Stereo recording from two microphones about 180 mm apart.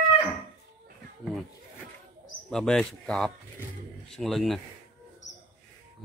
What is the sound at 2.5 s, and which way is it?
Speech, 5° left (ahead or behind).